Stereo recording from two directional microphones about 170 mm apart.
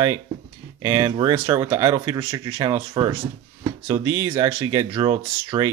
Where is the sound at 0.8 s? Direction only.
20° right (ahead or behind).